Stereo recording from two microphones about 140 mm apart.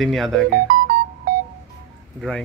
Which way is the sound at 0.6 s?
80° right.